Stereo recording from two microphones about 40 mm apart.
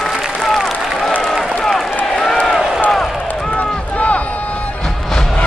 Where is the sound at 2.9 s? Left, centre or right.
Centre.